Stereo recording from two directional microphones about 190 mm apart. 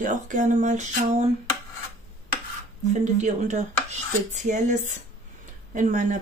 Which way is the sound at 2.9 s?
40° right (ahead or behind).